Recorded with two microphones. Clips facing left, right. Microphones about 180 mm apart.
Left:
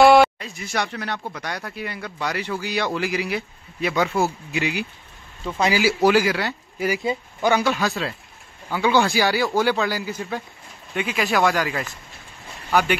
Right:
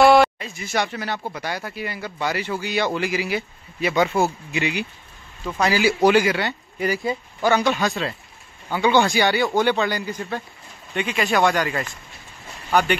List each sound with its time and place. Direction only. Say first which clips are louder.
0.0 s speech: left 1 dB; centre (ahead or behind)
6.0 s speech: right 1 dB; centre (ahead or behind)
7.0 s speech: even; 20° left (ahead or behind)
7.5 s speech: right 2 dB; centre (ahead or behind)